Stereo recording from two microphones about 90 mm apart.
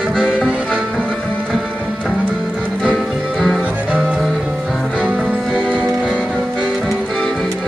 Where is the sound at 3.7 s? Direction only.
15° right (ahead or behind).